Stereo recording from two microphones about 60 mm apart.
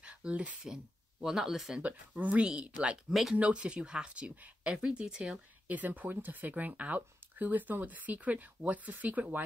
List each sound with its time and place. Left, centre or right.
0.0 s a sound: centre
1.2 s speech: centre
1.8 s speech: right
3.1 s speech: centre
3.3 s speech: centre
5.7 s speech: right